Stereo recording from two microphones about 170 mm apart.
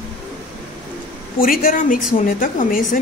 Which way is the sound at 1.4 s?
55° left (ahead or behind).